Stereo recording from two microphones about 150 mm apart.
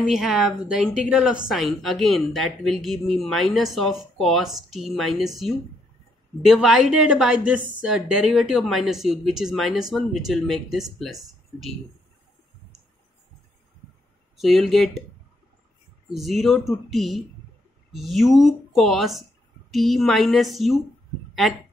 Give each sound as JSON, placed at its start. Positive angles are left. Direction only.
{"t": 0.0, "sound": "a woman's voice", "side_deg": -5}
{"t": 6.4, "sound": "a woman's voice", "side_deg": 0}
{"t": 14.3, "sound": "speech", "side_deg": 0}
{"t": 16.1, "sound": "a woman's voice", "side_deg": 0}